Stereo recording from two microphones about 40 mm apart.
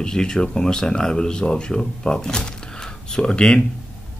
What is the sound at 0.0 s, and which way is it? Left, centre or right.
Speech, centre.